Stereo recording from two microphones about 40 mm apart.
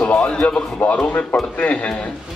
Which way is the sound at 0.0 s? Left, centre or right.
Left.